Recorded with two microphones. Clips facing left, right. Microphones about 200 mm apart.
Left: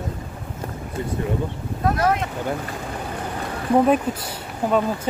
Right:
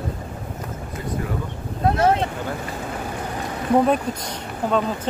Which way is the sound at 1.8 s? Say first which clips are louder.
Right 2 dB; 25° right (ahead or behind).